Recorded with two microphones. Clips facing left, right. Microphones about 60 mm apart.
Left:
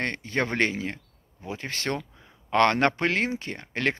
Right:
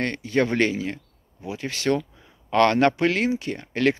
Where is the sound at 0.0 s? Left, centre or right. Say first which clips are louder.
Right 5 dB; left.